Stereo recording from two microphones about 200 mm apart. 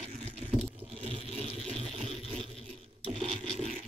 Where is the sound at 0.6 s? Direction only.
30° right (ahead or behind).